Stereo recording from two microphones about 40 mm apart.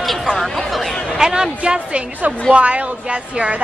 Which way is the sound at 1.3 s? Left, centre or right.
Right.